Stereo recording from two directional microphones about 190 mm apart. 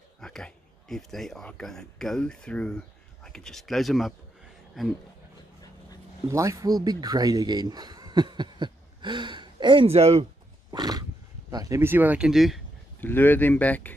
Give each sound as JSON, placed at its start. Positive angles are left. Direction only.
{"t": 0.2, "sound": "speech", "side_deg": 0}
{"t": 6.2, "sound": "speech", "side_deg": -15}
{"t": 10.7, "sound": "a sound", "side_deg": -20}
{"t": 11.5, "sound": "speech", "side_deg": -15}
{"t": 13.0, "sound": "speech", "side_deg": 10}